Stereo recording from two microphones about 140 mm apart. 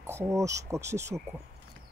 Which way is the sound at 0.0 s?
20° right (ahead or behind).